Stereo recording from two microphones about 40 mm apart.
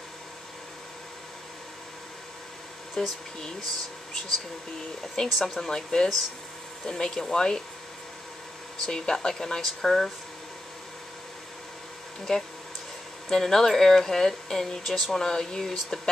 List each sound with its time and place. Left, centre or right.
3.0 s speech: centre
5.2 s speech: left
8.8 s speech: centre
12.3 s speech: centre